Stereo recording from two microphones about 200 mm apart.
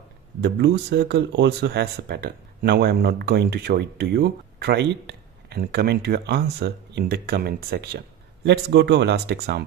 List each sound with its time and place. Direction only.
0.4 s speech: 55° right (ahead or behind)